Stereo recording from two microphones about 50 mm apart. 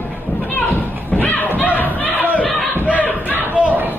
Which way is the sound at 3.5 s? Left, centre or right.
Right.